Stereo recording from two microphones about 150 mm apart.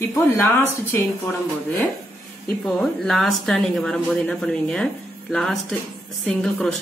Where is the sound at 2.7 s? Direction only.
Centre (ahead or behind).